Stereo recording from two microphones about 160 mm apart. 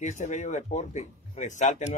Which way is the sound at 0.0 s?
50° left (ahead or behind).